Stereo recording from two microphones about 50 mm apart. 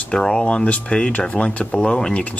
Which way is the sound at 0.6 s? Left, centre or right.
Left.